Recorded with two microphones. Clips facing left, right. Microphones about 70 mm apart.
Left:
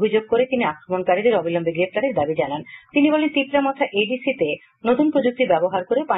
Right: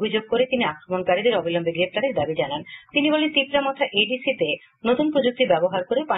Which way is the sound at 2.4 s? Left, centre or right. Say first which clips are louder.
Left 2 dB; left.